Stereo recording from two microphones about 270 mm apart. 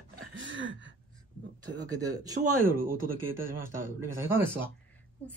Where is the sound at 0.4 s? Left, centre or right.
Right.